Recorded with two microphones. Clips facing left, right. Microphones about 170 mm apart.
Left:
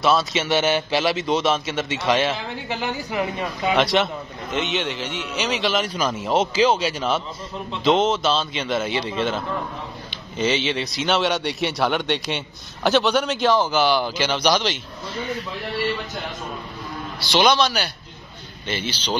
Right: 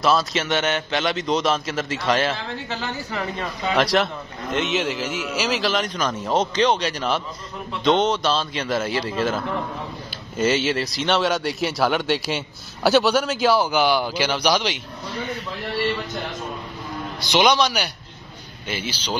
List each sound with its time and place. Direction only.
0.0 s a man's voice: centre (ahead or behind)
2.3 s a man's voice: 15° left (ahead or behind)
3.7 s a man's voice: centre (ahead or behind)
17.2 s a man's voice: 15° right (ahead or behind)